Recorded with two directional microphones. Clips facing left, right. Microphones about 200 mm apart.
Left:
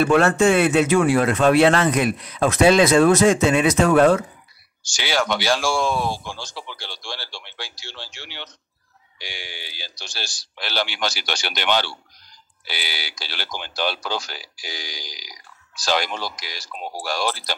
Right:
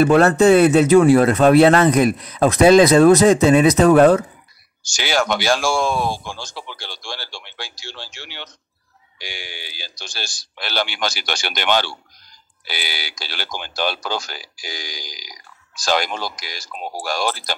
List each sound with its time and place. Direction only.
0.0 s speech: 40° right (ahead or behind)